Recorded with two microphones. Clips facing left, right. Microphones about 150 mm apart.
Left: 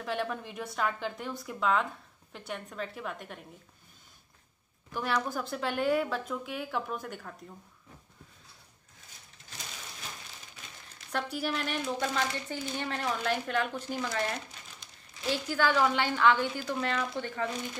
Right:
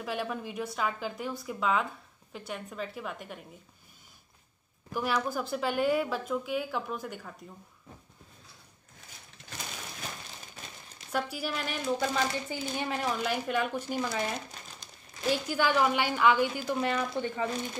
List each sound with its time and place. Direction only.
0.0 s speech: 5° right (ahead or behind)
4.9 s speech: 5° right (ahead or behind)
9.4 s a sound: 70° right (ahead or behind)
11.1 s speech: 5° right (ahead or behind)
15.3 s speech: 15° right (ahead or behind)